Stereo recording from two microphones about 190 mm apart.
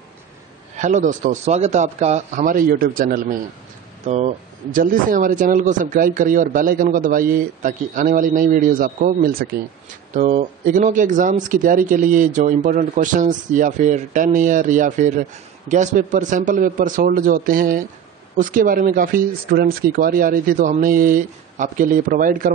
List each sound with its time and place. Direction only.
0.7 s speech: 40° right (ahead or behind)
4.0 s speech: 35° right (ahead or behind)